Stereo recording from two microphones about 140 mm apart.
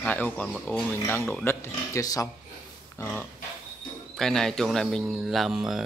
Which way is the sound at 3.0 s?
15° left (ahead or behind).